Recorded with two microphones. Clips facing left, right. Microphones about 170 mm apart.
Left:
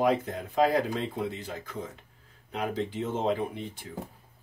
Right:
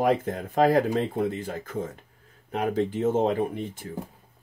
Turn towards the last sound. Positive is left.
turn(degrees=-50)  # may be behind; listen again after turning